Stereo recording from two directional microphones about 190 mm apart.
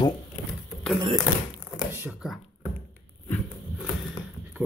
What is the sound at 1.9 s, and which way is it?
Speech, 10° right (ahead or behind).